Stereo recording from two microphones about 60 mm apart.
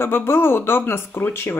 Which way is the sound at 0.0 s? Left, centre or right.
Left.